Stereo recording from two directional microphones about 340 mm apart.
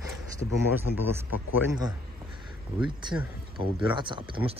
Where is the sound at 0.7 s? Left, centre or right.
Centre.